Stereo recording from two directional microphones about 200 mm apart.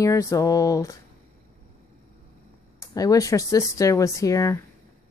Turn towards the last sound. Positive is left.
turn(degrees=15)  # may be behind; listen again after turning